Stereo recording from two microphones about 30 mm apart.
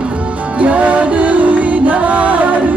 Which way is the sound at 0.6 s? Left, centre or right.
Right.